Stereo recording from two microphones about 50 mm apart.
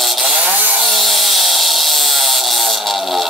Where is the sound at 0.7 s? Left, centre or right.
Centre.